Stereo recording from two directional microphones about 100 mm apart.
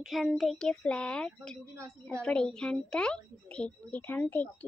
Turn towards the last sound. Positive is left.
turn(degrees=15)  # may be behind; listen again after turning